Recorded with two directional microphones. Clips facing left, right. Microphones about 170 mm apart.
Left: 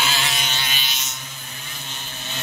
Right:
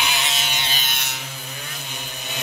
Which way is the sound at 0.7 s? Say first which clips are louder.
Right 2 dB; 50° right (ahead or behind).